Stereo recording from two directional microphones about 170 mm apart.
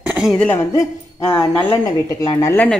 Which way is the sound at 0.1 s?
Centre (ahead or behind).